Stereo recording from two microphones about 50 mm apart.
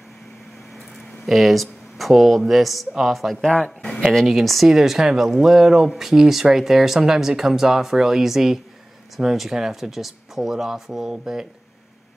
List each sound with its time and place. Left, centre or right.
0.9 s a woman's voice: centre
3.5 s speech: centre
4.3 s speech: centre